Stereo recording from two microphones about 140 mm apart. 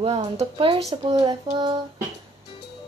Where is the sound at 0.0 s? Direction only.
45° right (ahead or behind).